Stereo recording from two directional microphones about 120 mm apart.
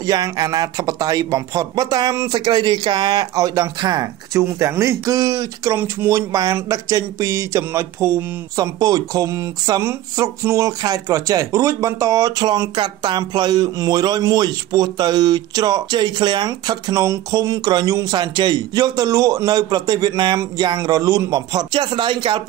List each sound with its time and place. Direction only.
0.0 s speech: 30° right (ahead or behind)